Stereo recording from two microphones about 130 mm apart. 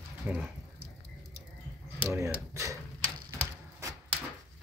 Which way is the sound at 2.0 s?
25° right (ahead or behind).